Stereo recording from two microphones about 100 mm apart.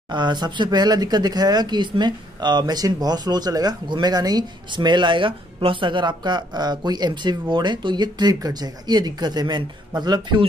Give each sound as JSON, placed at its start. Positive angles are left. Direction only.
{"t": 0.1, "sound": "speech", "side_deg": -45}